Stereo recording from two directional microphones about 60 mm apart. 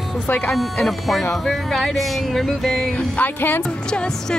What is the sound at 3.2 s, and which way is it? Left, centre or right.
Speech, left.